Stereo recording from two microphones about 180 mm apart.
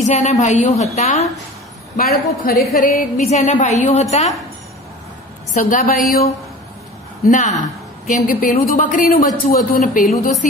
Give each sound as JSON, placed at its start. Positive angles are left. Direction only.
{"t": 0.0, "sound": "a woman's voice", "side_deg": 40}
{"t": 2.0, "sound": "a woman's voice", "side_deg": 50}
{"t": 5.5, "sound": "a woman's voice", "side_deg": 45}
{"t": 7.2, "sound": "a woman's voice", "side_deg": 45}